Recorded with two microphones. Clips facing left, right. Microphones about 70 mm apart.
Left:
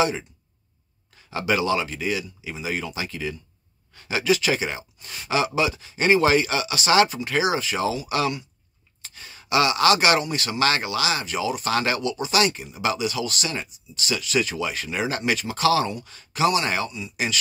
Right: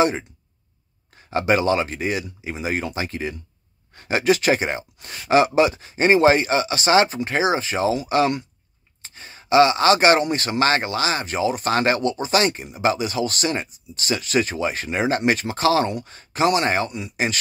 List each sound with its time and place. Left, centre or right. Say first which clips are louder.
1.1 s speech: right 4 dB; right
10.2 s speech: right 3 dB; right